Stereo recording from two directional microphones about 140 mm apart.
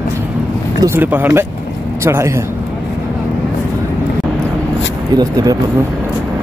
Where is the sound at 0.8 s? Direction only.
15° right (ahead or behind).